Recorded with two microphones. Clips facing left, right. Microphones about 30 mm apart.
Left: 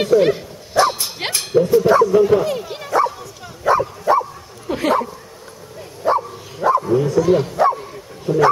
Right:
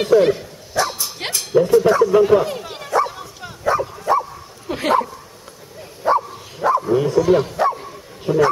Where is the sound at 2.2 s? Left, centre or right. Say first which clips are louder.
Even; centre.